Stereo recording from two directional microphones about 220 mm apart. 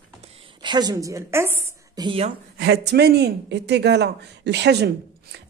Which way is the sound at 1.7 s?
20° right (ahead or behind).